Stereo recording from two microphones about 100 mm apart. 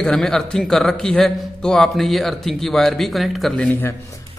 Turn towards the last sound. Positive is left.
turn(degrees=10)  # may be behind; listen again after turning